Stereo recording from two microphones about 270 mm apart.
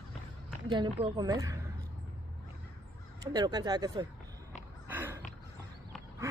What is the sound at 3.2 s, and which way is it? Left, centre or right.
Speech, centre.